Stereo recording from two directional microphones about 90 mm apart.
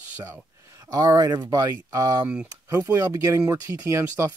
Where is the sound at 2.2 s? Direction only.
10° right (ahead or behind).